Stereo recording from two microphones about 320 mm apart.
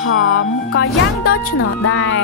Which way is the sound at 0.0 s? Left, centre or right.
Left.